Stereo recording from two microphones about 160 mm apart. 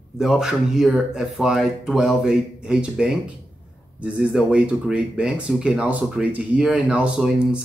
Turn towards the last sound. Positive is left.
turn(degrees=-5)  # may be behind; listen again after turning